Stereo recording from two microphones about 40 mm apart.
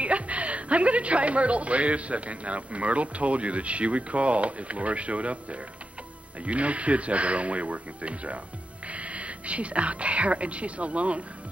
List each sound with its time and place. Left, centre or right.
0.0 s a woman's voice: right